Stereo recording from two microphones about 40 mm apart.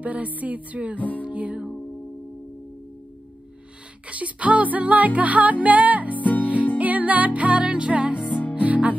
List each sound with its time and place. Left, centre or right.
0.0 s music: right
0.9 s music: left
1.2 s music: right
4.1 s music: right